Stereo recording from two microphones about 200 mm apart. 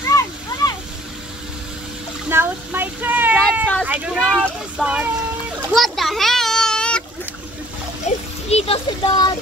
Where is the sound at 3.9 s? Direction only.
Centre (ahead or behind).